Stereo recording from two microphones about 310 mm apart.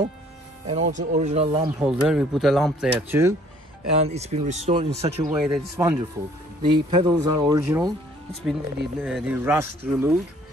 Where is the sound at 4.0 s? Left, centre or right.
Right.